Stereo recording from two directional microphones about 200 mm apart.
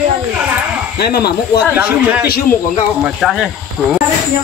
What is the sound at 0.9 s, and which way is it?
Speech, 55° left (ahead or behind).